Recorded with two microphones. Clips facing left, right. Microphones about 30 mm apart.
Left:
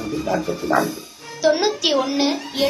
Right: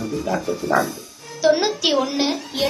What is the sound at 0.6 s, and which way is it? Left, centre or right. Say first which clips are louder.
Speech: even; left.